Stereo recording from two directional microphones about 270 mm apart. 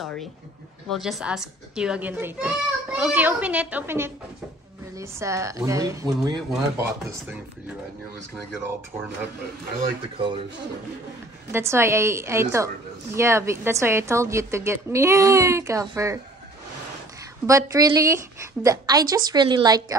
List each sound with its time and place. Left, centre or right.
0.0 s a child's voice: centre
10.1 s speech: centre
11.5 s a woman's voice: centre
17.5 s a woman's voice: centre